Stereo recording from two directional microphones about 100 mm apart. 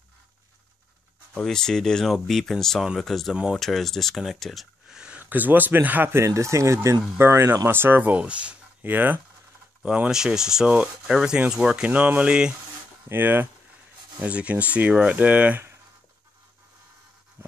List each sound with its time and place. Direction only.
1.3 s speech: 5° left (ahead or behind); by 12.5 s 10° right (ahead or behind)
13.1 s speech: 20° right (ahead or behind)
17.4 s a sound: 20° right (ahead or behind)